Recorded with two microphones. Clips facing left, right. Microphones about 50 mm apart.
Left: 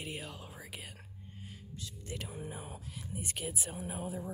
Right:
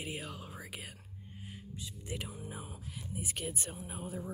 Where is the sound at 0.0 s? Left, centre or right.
Centre.